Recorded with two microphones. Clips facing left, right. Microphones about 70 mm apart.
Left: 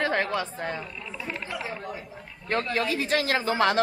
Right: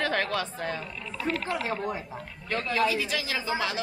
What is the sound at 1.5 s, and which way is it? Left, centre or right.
Speech, right.